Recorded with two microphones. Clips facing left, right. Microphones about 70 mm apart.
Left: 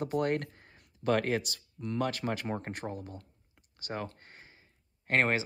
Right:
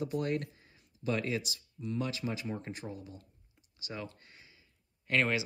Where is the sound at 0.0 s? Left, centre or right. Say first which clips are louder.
Left 3 dB; left.